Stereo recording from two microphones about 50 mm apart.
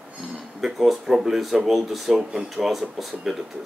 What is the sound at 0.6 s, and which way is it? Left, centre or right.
Speech, centre.